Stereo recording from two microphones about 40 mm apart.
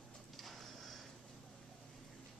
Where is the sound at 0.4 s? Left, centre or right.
Centre.